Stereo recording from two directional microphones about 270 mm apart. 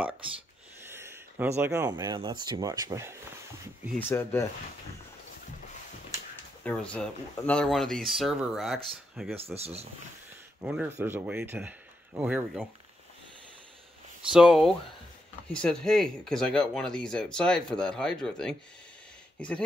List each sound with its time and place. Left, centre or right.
0.8 s a sound: centre
1.6 s a man's voice: centre
4.1 s speech: centre
6.6 s speech: centre
9.6 s speech: right
10.6 s a man's voice: centre
14.3 s speech: centre